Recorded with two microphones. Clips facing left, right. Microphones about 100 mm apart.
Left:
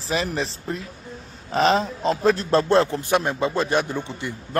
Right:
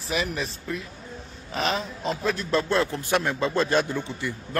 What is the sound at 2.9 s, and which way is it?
A man's voice, 20° left (ahead or behind).